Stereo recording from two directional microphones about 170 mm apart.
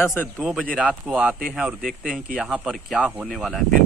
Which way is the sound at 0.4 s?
Centre (ahead or behind).